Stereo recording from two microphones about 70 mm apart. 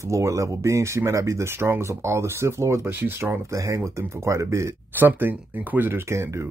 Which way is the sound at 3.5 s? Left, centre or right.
Right.